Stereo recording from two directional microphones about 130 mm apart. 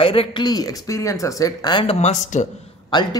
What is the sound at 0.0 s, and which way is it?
Speech, 45° left (ahead or behind).